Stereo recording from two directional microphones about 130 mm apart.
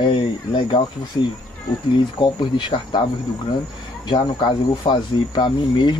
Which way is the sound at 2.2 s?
35° left (ahead or behind).